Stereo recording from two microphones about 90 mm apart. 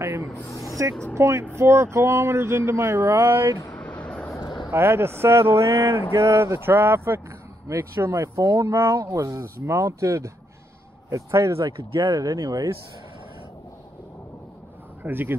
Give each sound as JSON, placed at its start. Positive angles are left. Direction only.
{"t": 0.0, "sound": "speech", "side_deg": -30}
{"t": 0.5, "sound": "speech", "side_deg": 35}
{"t": 1.1, "sound": "speech", "side_deg": -30}
{"t": 4.6, "sound": "speech", "side_deg": -25}
{"t": 15.0, "sound": "speech", "side_deg": -25}